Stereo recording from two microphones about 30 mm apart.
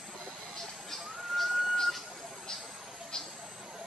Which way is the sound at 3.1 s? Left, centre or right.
Left.